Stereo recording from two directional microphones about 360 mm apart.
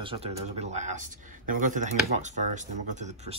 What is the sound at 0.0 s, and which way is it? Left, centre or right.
Speech, centre.